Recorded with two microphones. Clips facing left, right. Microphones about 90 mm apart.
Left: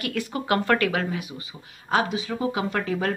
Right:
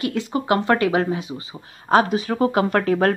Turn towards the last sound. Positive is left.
turn(degrees=-55)  # may be behind; listen again after turning